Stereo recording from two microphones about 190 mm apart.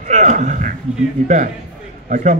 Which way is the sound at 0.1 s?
40° right (ahead or behind).